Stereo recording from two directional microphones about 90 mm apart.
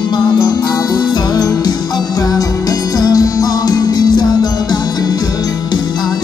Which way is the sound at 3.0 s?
45° left (ahead or behind).